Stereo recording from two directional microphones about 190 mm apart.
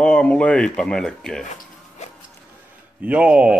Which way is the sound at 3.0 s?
5° right (ahead or behind).